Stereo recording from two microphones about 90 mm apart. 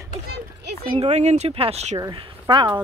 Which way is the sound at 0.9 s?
90° right.